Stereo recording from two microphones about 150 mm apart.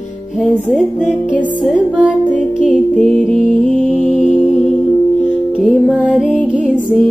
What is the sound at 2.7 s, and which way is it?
Music, 5° left (ahead or behind).